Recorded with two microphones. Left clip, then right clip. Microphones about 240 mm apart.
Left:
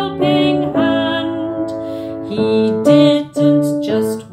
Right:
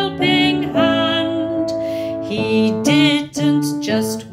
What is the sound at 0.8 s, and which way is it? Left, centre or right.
Music, centre.